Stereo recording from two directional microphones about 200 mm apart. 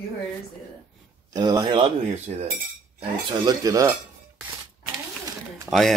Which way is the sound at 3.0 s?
20° right (ahead or behind).